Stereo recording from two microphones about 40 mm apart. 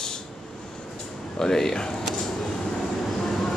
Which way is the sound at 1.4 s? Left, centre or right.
Centre.